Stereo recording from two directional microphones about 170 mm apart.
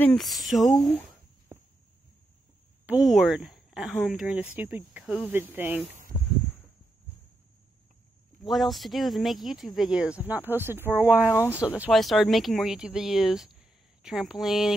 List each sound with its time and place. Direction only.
0.0 s speech: 5° left (ahead or behind)
2.9 s speech: centre (ahead or behind)
5.9 s a sound: 45° right (ahead or behind)
8.5 s speech: centre (ahead or behind)
11.3 s speech: 15° left (ahead or behind)
11.9 s speech: centre (ahead or behind)